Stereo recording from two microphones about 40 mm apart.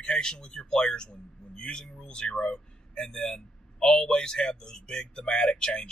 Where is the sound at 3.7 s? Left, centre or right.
Left.